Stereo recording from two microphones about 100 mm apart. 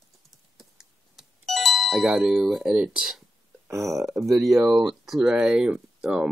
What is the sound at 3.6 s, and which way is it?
Speech, 30° right (ahead or behind).